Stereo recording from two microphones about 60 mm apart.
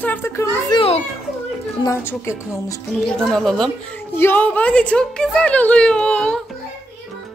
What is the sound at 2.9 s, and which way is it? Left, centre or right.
Speech, left.